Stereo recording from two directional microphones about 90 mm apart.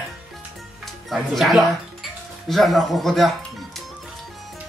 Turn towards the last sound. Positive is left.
turn(degrees=0)  # may be behind; listen again after turning